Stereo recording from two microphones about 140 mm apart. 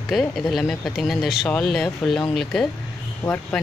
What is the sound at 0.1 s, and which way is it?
Speech, centre (ahead or behind).